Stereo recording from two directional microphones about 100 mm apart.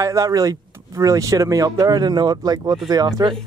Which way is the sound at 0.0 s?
35° right (ahead or behind).